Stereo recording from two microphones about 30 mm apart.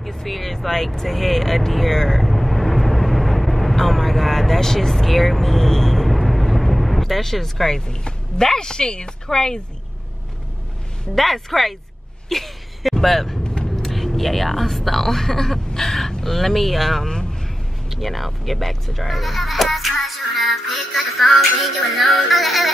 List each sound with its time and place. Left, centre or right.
0.0 s speech: centre
2.2 s vehicle: centre
7.1 s speech: centre
8.5 s speech: left
11.1 s a child's voice: centre
17.1 s vehicle: left
17.9 s a child's voice: centre